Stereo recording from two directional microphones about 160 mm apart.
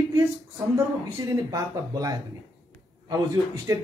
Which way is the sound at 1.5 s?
20° right (ahead or behind).